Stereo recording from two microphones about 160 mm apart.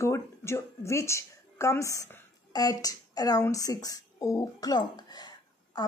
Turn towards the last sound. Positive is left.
turn(degrees=25)  # may be behind; listen again after turning